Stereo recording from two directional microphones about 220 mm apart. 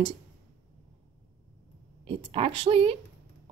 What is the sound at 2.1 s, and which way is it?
Speech, 25° right (ahead or behind).